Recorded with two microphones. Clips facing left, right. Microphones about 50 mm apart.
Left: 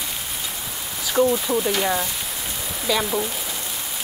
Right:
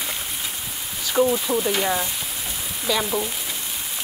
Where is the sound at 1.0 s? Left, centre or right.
Centre.